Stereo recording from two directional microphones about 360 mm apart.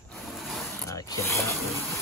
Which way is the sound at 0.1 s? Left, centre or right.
Centre.